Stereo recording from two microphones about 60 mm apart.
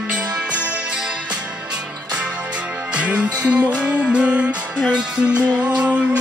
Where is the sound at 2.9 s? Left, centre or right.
Centre.